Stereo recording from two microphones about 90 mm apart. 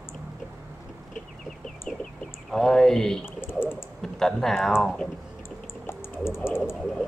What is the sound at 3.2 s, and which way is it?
Pigeon, 25° left (ahead or behind).